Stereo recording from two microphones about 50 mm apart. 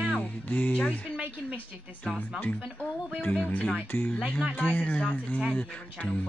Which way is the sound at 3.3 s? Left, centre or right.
Left.